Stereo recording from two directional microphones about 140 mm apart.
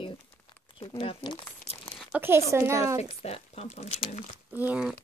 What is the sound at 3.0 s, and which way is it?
Speech, 50° left (ahead or behind).